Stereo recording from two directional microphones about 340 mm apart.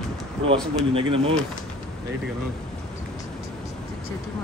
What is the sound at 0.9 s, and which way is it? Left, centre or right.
Speech, centre.